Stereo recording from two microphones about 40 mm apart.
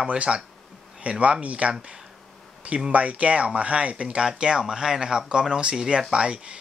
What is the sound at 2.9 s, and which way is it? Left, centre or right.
Speech, right.